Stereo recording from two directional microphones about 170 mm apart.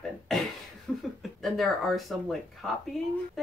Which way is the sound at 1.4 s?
Centre (ahead or behind).